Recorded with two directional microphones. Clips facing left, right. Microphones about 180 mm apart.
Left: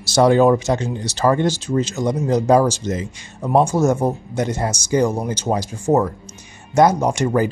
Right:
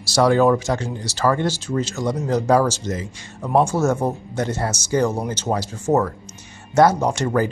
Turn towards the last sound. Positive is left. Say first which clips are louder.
# left 2 dB
turn(degrees=15)  # may be behind; listen again after turning